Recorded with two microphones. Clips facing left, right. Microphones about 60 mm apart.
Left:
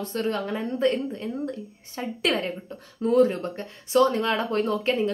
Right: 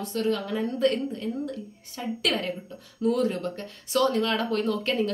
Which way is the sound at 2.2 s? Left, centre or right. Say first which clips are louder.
Left 3 dB; left.